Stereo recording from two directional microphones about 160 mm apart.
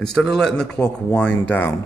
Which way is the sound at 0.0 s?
5° left (ahead or behind).